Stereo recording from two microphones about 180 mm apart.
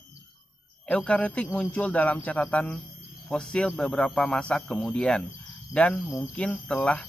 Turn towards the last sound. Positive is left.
turn(degrees=5)  # may be behind; listen again after turning